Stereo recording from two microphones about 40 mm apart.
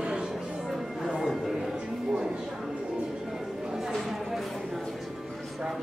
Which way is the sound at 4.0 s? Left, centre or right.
Centre.